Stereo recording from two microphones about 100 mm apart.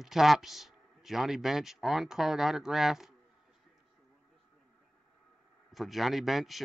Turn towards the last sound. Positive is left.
turn(degrees=0)  # may be behind; listen again after turning